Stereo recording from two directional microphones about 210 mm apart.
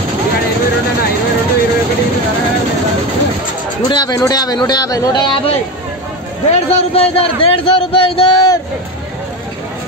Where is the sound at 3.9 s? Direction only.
20° left (ahead or behind).